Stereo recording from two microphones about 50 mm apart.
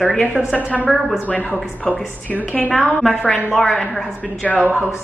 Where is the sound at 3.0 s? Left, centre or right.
Centre.